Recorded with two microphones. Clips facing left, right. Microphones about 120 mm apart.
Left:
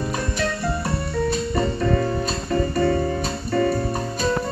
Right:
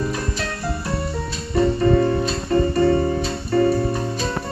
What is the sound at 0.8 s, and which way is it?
Music, 55° left (ahead or behind).